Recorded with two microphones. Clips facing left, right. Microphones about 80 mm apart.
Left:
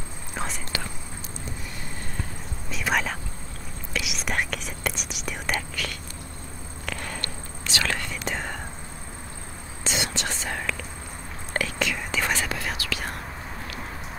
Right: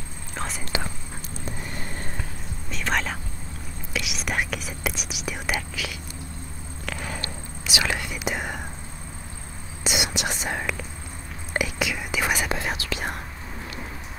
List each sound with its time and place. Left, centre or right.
0.3 s whispering: centre
2.7 s whispering: centre
9.8 s whispering: centre
12.4 s whispering: right